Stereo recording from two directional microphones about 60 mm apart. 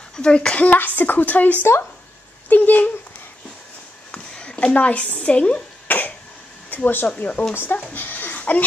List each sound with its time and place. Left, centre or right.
0.1 s speech: centre
0.7 s speech: left
4.1 s speech: centre
5.9 s cough: left
6.7 s speech: left
7.9 s a sound: left